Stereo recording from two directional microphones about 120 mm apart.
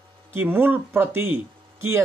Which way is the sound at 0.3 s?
15° right (ahead or behind).